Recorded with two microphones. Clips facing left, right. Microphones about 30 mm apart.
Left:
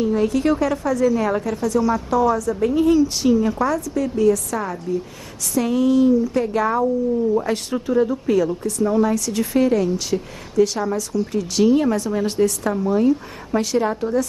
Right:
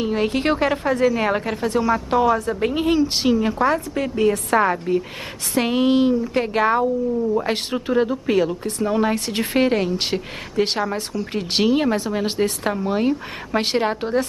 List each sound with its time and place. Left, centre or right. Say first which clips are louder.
0.0 s speech: left 2 dB; right
3.6 s speech: right 1 dB; right